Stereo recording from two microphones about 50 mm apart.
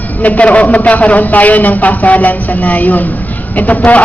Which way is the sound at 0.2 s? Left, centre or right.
Left.